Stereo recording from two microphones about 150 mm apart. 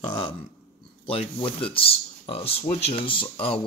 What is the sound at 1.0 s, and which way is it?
Speech, 40° left (ahead or behind).